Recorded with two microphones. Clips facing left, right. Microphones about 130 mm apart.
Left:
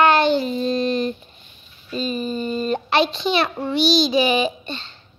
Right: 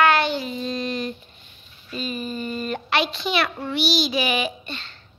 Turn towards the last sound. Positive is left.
turn(degrees=25)  # may be behind; listen again after turning